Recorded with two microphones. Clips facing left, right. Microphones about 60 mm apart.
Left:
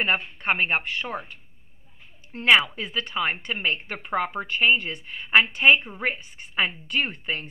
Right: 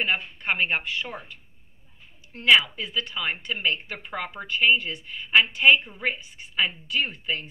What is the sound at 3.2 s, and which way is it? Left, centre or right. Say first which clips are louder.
A woman's voice: left 6 dB; left.